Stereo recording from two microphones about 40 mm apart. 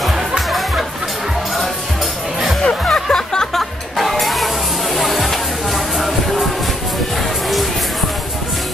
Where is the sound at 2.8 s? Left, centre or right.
Centre.